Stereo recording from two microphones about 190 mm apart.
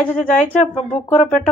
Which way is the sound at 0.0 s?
5° left (ahead or behind).